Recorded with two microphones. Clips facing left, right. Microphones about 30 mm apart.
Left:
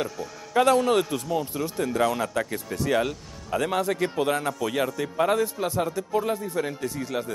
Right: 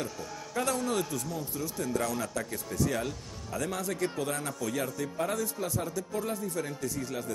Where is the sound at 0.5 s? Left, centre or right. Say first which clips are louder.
Left 10 dB; left.